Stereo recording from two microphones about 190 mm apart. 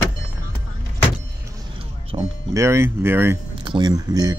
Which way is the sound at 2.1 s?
25° right (ahead or behind).